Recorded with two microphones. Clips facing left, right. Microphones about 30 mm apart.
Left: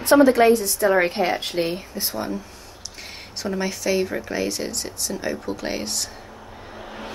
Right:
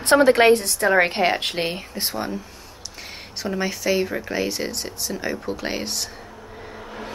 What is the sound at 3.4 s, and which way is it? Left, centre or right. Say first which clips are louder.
Speech: right 1 dB; centre.